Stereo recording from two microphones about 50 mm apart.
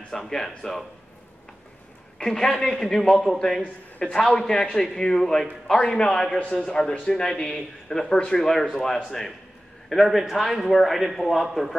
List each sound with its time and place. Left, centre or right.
0.1 s a man's voice: centre
2.1 s a woman's voice: centre